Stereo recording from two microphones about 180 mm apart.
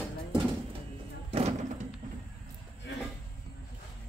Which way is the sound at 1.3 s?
35° right (ahead or behind).